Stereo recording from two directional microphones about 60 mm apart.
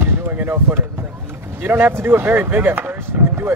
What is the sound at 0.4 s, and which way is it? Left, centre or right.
Speech, right.